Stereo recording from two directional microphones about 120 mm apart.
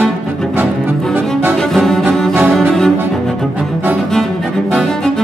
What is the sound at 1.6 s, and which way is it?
Music, 5° left (ahead or behind).